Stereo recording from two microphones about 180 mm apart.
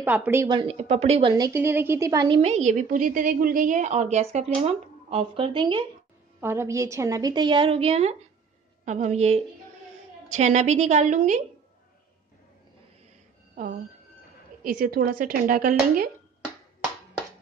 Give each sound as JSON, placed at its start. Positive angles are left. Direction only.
{"t": 0.0, "sound": "speech", "side_deg": -10}
{"t": 0.5, "sound": "a woman's voice", "side_deg": -30}
{"t": 1.3, "sound": "a woman's voice", "side_deg": -15}
{"t": 6.4, "sound": "a woman's voice", "side_deg": -15}
{"t": 14.6, "sound": "speech", "side_deg": -55}